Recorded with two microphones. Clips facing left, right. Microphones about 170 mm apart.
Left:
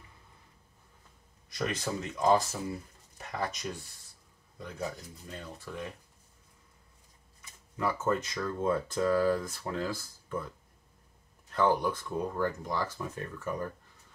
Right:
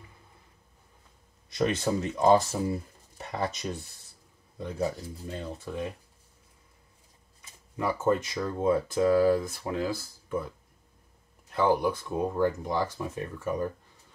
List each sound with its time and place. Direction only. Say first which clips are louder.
1.6 s speech: right 7 dB; 30° right (ahead or behind)
7.7 s speech: right 4 dB; 15° right (ahead or behind)
11.5 s speech: right 3 dB; 15° right (ahead or behind)